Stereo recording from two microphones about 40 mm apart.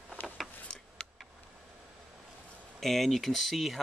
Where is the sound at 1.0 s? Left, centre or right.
Left.